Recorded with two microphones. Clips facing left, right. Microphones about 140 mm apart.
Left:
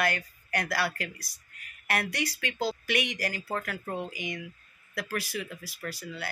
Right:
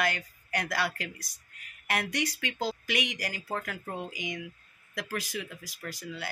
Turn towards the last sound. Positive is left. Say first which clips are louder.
# left 1 dB
turn(degrees=-15)  # may be behind; listen again after turning